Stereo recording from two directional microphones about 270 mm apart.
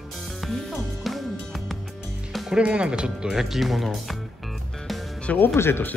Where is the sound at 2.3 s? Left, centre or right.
Centre.